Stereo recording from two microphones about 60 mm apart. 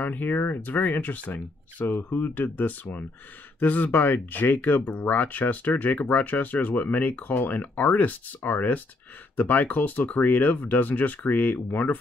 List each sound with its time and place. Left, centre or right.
0.0 s speech: left